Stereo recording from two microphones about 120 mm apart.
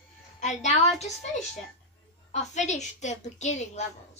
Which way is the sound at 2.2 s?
75° left (ahead or behind).